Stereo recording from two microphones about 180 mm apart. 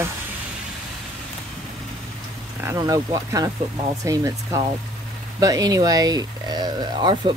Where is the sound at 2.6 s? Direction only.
15° right (ahead or behind).